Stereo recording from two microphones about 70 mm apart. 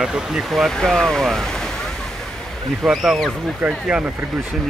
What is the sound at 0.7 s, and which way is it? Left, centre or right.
Speech, centre.